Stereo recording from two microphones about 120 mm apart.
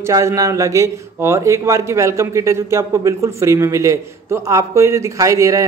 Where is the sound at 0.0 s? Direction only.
25° right (ahead or behind).